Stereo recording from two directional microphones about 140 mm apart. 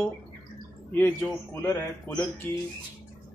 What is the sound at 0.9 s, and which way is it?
Speech, 15° left (ahead or behind).